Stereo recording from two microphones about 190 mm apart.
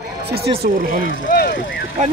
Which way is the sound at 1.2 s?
50° left (ahead or behind).